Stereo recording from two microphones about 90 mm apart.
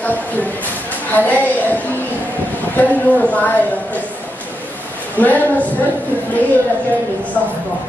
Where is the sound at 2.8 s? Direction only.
15° left (ahead or behind).